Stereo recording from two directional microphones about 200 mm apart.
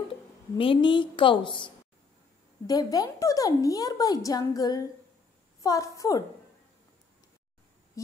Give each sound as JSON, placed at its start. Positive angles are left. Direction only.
{"t": 0.6, "sound": "a woman's voice", "side_deg": 25}